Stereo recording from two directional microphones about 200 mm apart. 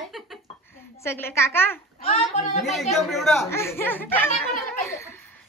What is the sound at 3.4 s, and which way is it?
A child's voice, 15° left (ahead or behind).